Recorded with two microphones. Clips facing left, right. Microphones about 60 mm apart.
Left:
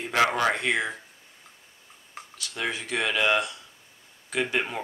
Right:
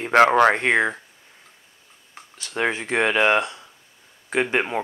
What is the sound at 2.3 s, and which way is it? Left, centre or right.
Speech, right.